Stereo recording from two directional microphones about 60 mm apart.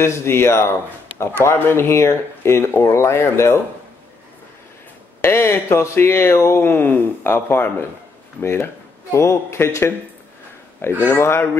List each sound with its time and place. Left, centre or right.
0.0 s speech: left
5.2 s speech: left
11.1 s speech: left